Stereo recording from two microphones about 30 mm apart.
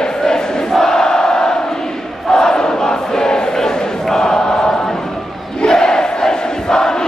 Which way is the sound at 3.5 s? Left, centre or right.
Left.